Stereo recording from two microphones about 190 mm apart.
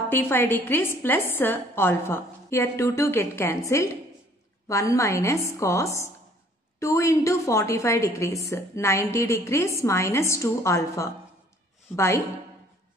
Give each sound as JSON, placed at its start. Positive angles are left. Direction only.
{"t": 0.1, "sound": "a woman's voice", "side_deg": 10}